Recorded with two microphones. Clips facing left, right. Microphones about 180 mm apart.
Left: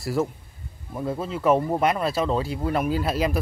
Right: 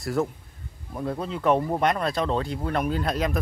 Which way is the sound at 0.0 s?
Centre (ahead or behind).